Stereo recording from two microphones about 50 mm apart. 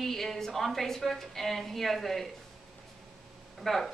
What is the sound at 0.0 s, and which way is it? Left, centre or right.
A woman's voice, centre.